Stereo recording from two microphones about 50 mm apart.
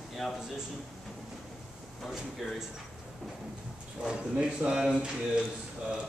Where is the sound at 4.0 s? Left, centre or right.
Centre.